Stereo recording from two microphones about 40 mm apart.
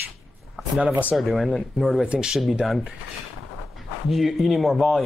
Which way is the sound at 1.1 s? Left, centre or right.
Centre.